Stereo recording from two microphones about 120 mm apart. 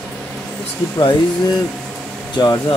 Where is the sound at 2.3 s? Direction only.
30° left (ahead or behind).